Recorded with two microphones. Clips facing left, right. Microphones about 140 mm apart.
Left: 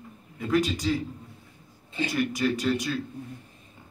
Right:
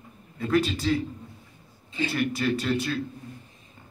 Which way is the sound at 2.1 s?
15° left (ahead or behind).